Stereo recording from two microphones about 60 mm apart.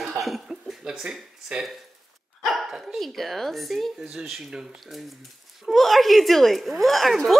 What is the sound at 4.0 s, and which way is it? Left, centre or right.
Speech, centre.